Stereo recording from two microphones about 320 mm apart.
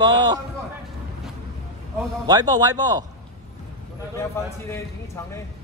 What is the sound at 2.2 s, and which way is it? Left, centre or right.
Speech, centre.